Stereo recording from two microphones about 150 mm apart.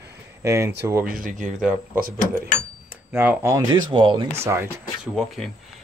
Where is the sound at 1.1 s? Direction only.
60° right (ahead or behind).